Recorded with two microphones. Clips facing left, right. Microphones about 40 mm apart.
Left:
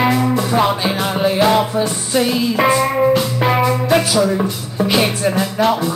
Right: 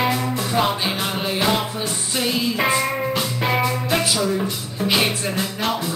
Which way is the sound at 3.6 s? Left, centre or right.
Centre.